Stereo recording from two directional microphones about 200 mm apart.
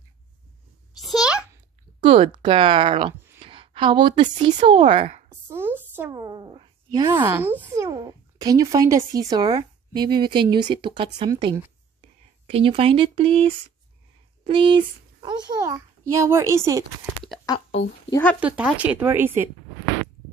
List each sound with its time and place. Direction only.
0.9 s a sound: centre (ahead or behind)
2.0 s speech: 25° right (ahead or behind)
3.3 s a sound: 25° right (ahead or behind)
4.2 s speech: 30° right (ahead or behind)
5.3 s a child's voice: 10° right (ahead or behind)
17.5 s speech: 20° left (ahead or behind)
18.1 s speech: 5° left (ahead or behind)
18.4 s speech: 5° right (ahead or behind)